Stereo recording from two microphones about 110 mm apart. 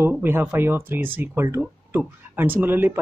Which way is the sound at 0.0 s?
20° right (ahead or behind).